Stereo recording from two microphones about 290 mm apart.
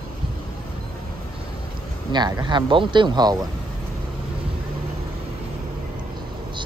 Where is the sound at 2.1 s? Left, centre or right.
Centre.